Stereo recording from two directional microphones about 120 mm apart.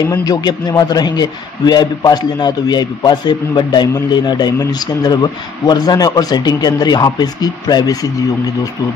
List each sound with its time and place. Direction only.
0.1 s a man's voice: 30° left (ahead or behind)